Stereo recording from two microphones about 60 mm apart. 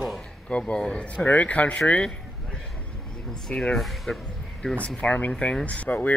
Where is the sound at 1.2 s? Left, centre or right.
Left.